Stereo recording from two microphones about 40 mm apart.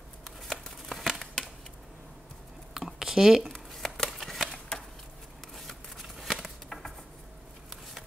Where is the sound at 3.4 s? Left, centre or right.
Centre.